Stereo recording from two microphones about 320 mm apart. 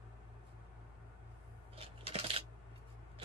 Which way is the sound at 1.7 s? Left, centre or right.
Centre.